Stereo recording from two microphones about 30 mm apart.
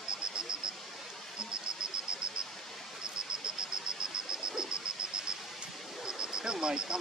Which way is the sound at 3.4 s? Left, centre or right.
Right.